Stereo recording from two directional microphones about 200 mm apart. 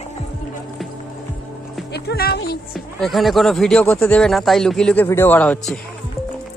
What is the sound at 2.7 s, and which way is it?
Speech, centre (ahead or behind).